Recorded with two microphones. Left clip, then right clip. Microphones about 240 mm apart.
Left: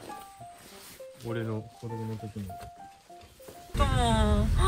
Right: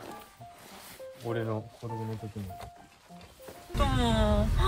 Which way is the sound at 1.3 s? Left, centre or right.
Right.